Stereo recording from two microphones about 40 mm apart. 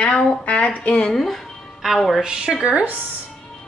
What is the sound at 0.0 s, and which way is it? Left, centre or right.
A woman's voice, left.